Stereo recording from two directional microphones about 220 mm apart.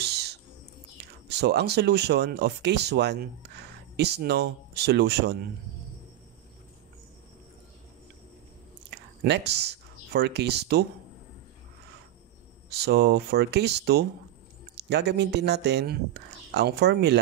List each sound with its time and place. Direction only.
0.0 s bird: 50° right (ahead or behind)
1.3 s speech: 50° right (ahead or behind)
8.9 s speech: 50° right (ahead or behind)
12.7 s speech: 45° right (ahead or behind)